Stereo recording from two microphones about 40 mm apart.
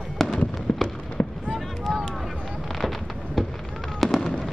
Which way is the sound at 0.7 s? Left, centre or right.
Left.